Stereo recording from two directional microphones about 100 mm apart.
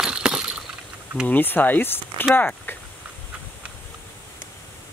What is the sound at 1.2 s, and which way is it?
Speech, 20° left (ahead or behind).